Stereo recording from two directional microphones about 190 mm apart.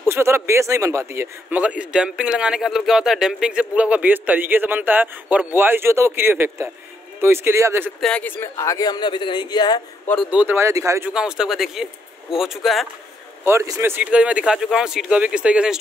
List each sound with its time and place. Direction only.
0.1 s a man's voice: 15° right (ahead or behind)
8.0 s speech: 5° left (ahead or behind)
10.3 s a man's voice: 10° right (ahead or behind)
11.1 s speech: 5° right (ahead or behind)
13.4 s a man's voice: 15° right (ahead or behind)